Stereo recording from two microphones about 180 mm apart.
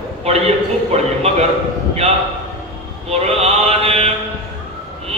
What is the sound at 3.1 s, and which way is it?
Mantra, 35° right (ahead or behind).